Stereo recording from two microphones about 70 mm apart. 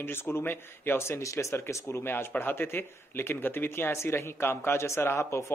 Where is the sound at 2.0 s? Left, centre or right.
Left.